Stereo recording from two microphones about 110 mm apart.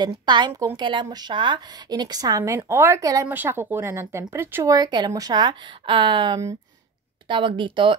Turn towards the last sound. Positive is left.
turn(degrees=-50)  # may be behind; listen again after turning